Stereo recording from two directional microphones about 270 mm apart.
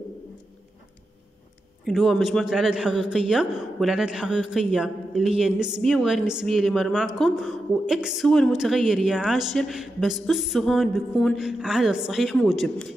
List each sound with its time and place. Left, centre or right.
1.9 s a woman's voice: centre